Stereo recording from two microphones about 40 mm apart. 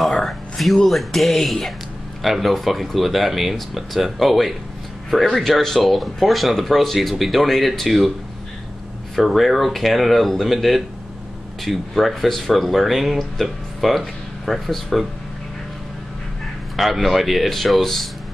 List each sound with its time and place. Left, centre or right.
0.2 s a sound: centre
0.8 s a man's voice: centre
9.1 s speech: centre
16.7 s speech: centre